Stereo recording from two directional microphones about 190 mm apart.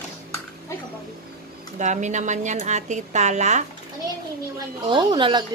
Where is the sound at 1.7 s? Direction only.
40° right (ahead or behind).